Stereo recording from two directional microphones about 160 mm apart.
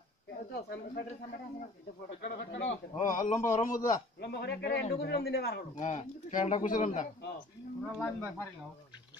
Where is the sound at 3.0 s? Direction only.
55° left (ahead or behind).